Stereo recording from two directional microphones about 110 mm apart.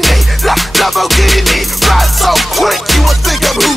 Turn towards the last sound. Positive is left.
turn(degrees=0)  # may be behind; listen again after turning